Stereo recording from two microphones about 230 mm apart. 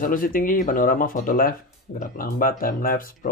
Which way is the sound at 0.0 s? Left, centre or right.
Left.